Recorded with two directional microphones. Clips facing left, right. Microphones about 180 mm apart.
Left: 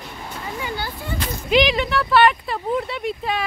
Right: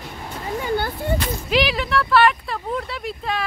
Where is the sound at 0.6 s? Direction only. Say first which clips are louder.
Right 7 dB; 50° right (ahead or behind).